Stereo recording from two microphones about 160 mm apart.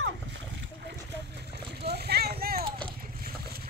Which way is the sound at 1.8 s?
90° right.